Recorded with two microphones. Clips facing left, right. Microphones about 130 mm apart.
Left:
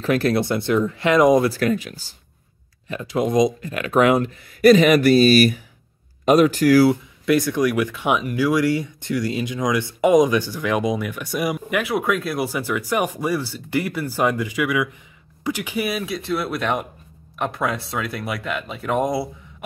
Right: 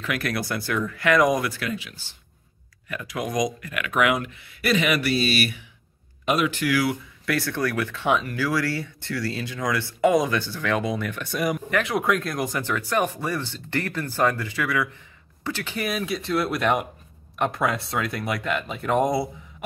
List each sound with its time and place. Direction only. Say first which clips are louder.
0.0 s speech: left 8 dB; 30° left (ahead or behind)
1.6 s speech: left 9 dB; 45° left (ahead or behind)
2.9 s speech: left 8 dB; 25° left (ahead or behind)
7.2 s speech: left 7 dB; 15° left (ahead or behind); by 19.2 s centre (ahead or behind)